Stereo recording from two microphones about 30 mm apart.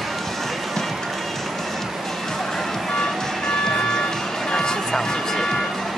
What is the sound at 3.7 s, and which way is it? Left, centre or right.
Music, left.